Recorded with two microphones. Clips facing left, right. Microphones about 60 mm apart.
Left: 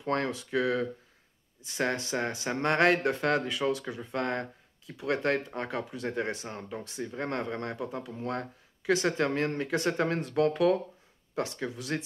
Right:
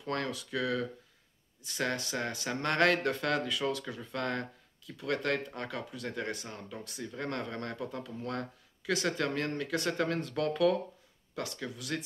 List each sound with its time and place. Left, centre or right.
0.0 s speech: left